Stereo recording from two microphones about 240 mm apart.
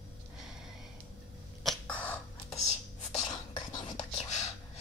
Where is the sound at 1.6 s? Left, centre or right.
Centre.